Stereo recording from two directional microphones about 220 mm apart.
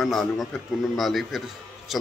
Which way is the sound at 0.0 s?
Centre (ahead or behind).